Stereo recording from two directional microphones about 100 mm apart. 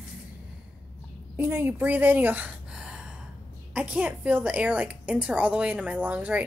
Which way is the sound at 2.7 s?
10° right (ahead or behind).